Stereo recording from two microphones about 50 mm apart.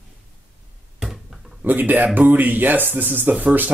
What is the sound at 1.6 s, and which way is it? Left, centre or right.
Speech, right.